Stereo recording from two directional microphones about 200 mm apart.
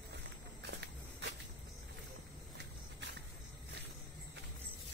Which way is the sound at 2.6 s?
60° right (ahead or behind).